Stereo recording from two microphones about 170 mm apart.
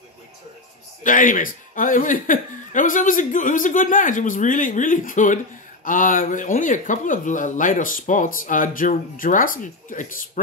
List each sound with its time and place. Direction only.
1.0 s speech: 50° left (ahead or behind)